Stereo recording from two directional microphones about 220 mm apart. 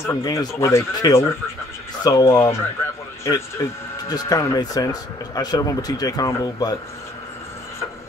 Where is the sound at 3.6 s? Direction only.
15° left (ahead or behind).